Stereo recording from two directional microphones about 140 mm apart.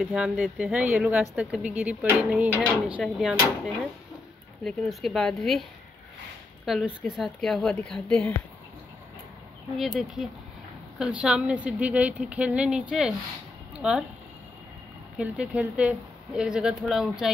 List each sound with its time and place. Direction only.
0.0 s a woman's voice: 5° right (ahead or behind)
9.8 s a woman's voice: centre (ahead or behind)
15.1 s a woman's voice: 10° right (ahead or behind)